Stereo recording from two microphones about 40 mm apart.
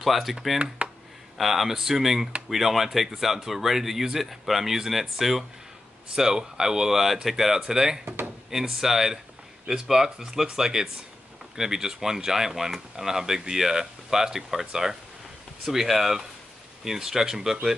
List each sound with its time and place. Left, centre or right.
0.0 s speech: centre